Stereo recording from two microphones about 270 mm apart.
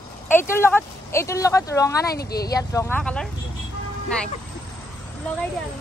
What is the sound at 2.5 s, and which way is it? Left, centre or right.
Speech, centre.